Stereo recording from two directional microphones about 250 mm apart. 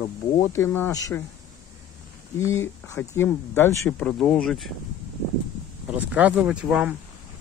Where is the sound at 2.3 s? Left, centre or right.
Centre.